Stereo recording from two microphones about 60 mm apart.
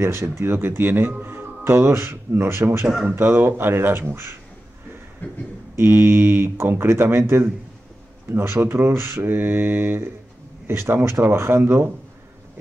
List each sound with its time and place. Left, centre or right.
0.0 s speech: right
5.8 s speech: right